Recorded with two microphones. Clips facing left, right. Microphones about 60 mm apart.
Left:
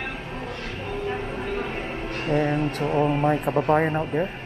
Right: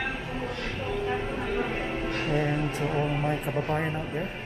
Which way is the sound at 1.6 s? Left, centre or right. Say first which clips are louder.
Even; centre.